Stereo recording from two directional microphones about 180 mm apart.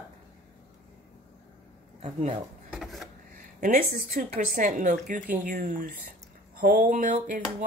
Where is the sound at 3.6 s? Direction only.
50° right (ahead or behind).